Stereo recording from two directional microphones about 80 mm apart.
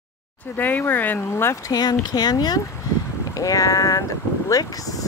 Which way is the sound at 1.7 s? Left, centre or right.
Left.